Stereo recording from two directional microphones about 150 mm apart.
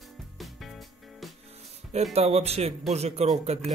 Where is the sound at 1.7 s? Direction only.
45° right (ahead or behind).